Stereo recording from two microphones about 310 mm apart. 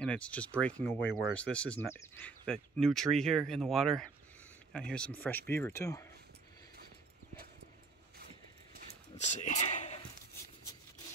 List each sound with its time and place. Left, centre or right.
0.0 s speech: centre
9.1 s speech: left